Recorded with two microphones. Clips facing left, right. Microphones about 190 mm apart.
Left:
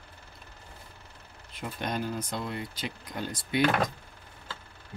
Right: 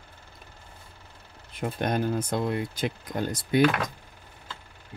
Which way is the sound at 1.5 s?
50° right (ahead or behind).